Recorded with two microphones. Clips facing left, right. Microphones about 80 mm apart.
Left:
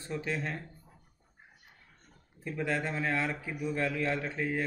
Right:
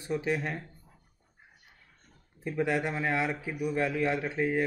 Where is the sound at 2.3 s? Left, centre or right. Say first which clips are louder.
Right 4 dB; centre.